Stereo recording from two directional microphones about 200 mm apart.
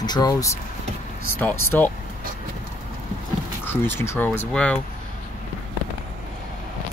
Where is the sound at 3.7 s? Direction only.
10° left (ahead or behind).